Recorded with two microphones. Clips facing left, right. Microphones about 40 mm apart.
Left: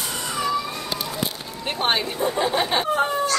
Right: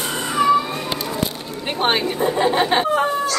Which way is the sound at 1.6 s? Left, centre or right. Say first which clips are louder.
Right 3 dB; centre.